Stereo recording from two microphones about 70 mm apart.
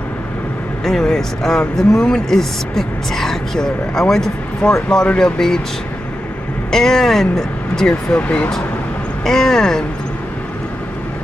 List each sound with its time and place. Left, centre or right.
0.8 s speech: centre
6.7 s speech: centre
8.2 s speech: centre
9.2 s speech: centre